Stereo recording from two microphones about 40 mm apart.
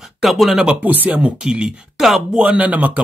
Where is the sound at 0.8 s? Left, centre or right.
Right.